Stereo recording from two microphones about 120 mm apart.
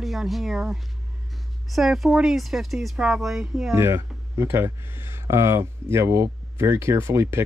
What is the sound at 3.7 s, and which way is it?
Speech, 20° right (ahead or behind).